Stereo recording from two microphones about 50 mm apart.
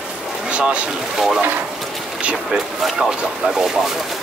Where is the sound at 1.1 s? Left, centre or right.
Centre.